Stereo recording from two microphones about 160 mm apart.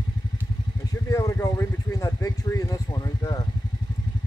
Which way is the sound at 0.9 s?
20° left (ahead or behind).